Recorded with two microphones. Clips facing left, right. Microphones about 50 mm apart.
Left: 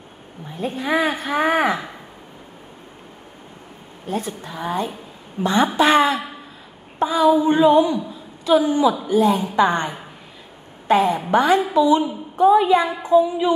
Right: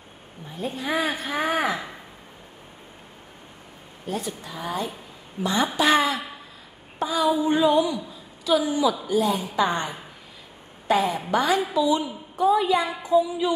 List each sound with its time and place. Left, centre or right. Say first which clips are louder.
0.6 s a woman's voice: left 5 dB; left
4.1 s a woman's voice: left 4 dB; left
7.0 s a sound: left 6 dB; left
8.5 s a woman's voice: left 5 dB; left